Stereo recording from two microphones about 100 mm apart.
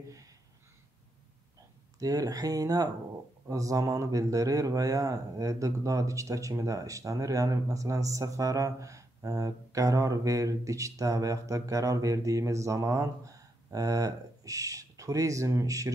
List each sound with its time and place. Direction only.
2.0 s speech: 35° right (ahead or behind)